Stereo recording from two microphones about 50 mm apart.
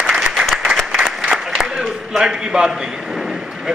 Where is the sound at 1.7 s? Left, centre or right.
Centre.